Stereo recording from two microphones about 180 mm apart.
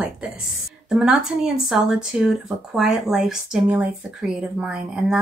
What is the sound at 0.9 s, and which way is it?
Speech, centre (ahead or behind).